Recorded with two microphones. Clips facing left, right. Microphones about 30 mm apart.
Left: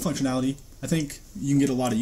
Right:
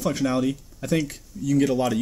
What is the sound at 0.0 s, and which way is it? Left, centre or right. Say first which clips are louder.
Speech: right 2 dB; centre.